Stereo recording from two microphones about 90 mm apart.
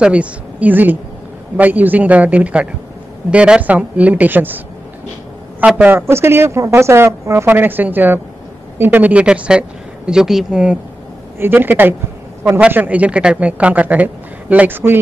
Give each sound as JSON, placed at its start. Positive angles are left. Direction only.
{"t": 0.0, "sound": "speech", "side_deg": -15}
{"t": 5.8, "sound": "speech", "side_deg": -25}
{"t": 11.3, "sound": "speech", "side_deg": -25}